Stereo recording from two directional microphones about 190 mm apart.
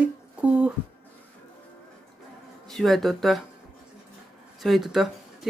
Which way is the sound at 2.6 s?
Centre (ahead or behind).